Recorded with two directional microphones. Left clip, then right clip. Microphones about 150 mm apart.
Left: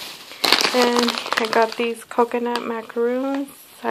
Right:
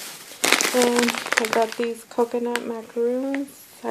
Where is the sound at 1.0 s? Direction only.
35° right (ahead or behind).